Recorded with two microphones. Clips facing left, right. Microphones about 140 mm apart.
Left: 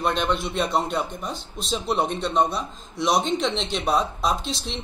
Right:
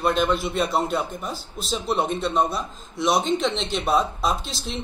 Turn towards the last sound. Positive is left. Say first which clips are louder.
# left 1 dB
turn(degrees=0)  # may be behind; listen again after turning